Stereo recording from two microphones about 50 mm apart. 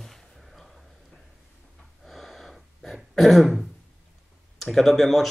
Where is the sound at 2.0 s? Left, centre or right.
Centre.